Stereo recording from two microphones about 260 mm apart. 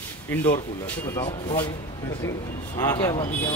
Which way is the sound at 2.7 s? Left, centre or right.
Centre.